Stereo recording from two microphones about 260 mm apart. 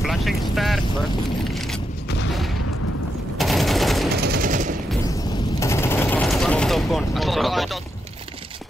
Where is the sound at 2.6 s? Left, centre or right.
Left.